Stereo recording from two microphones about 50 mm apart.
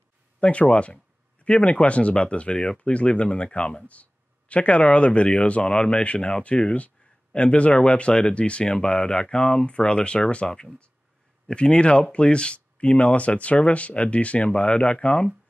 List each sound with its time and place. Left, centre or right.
0.4 s speech: left